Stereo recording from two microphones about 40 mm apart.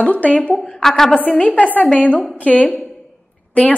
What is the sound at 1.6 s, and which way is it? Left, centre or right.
A woman's voice, left.